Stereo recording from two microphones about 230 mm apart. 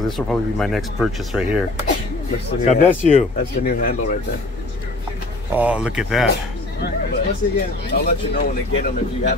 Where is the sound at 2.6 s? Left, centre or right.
Left.